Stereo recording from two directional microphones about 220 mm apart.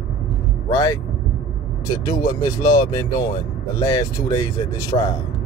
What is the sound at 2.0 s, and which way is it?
Speech, 15° left (ahead or behind).